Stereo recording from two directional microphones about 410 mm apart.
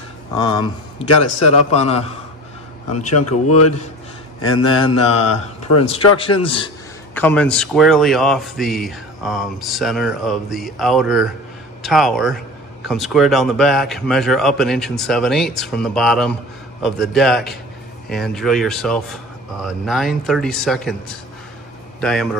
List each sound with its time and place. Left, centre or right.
0.4 s a man's voice: centre
3.1 s speech: left
4.6 s a man's voice: centre
5.2 s speech: left
5.8 s a man's voice: centre
22.0 s speech: centre